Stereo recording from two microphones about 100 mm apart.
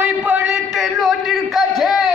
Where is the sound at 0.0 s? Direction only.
15° right (ahead or behind).